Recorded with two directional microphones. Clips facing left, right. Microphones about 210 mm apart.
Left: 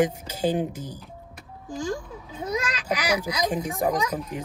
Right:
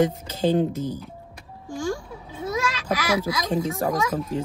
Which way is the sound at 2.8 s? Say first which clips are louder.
Right 2 dB; 15° left (ahead or behind).